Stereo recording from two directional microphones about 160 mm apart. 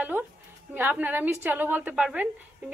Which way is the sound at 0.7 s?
10° right (ahead or behind).